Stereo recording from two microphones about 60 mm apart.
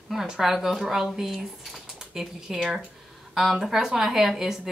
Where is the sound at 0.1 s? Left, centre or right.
Centre.